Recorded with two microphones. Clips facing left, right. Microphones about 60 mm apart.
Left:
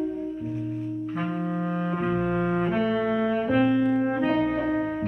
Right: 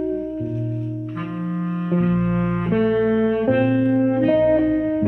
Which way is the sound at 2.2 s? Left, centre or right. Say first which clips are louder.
Right 3 dB; right.